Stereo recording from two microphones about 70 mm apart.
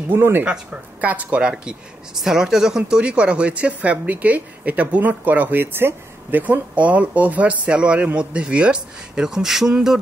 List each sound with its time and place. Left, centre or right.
0.1 s speech: right
0.5 s speech: centre
2.2 s speech: centre